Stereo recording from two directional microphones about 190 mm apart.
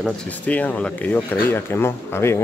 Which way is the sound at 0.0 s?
5° left (ahead or behind).